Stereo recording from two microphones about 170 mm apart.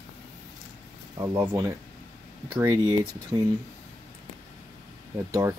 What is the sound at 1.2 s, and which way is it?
Speech, 15° right (ahead or behind).